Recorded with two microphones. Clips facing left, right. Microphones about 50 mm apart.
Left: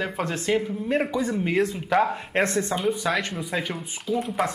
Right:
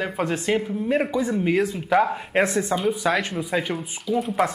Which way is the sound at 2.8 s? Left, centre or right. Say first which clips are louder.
Right 2 dB; centre.